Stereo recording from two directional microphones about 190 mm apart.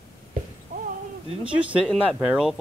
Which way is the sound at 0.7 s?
40° right (ahead or behind).